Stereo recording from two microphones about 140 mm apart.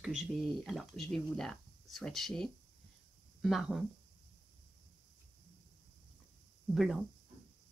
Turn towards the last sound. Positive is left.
turn(degrees=0)  # may be behind; listen again after turning